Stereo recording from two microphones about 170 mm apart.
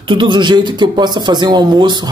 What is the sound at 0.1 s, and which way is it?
A man's voice, 25° right (ahead or behind).